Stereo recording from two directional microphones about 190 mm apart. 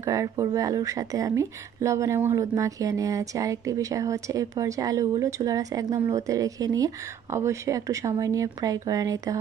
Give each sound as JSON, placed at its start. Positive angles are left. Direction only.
{"t": 0.0, "sound": "speech", "side_deg": -15}